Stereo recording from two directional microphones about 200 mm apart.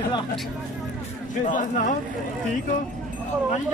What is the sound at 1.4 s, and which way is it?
Speech, 40° left (ahead or behind).